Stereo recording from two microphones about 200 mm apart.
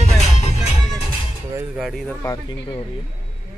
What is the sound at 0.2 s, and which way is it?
Music, 35° left (ahead or behind).